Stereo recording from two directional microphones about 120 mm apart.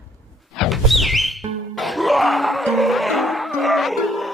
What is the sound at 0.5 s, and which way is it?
Music, centre (ahead or behind).